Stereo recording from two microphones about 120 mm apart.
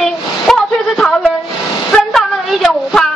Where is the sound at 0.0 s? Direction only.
Centre (ahead or behind).